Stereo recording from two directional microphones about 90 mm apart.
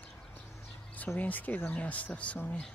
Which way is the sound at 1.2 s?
20° left (ahead or behind).